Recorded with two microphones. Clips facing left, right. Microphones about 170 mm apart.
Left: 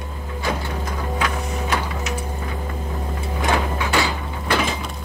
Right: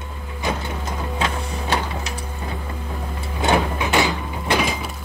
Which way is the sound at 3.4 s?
20° right (ahead or behind).